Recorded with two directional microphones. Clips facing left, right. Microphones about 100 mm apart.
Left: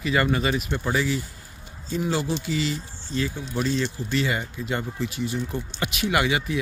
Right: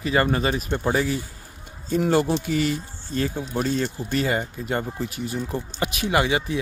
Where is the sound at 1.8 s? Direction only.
50° right (ahead or behind).